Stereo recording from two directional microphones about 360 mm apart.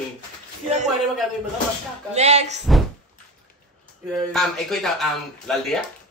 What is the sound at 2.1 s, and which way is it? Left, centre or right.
Speech, centre.